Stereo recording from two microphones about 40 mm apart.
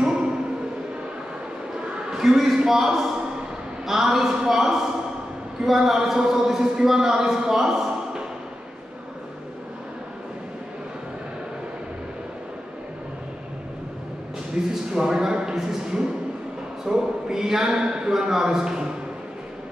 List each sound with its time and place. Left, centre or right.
0.0 s a sound: centre
2.0 s a man's voice: centre
14.5 s a man's voice: centre